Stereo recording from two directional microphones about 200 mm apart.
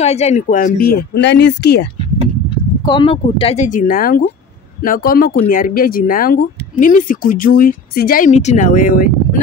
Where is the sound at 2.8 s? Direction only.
20° left (ahead or behind).